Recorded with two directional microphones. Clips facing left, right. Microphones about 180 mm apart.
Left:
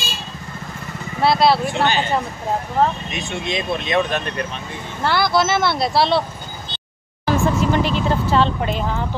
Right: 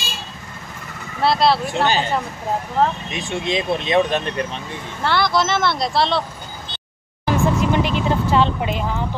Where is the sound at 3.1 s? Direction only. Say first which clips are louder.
Right 2 dB; 30° right (ahead or behind).